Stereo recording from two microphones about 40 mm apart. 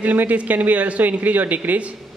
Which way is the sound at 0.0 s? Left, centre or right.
Right.